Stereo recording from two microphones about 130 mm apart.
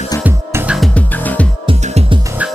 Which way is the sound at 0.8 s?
10° left (ahead or behind).